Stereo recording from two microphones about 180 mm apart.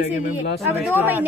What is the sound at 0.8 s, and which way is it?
Speech, 10° right (ahead or behind).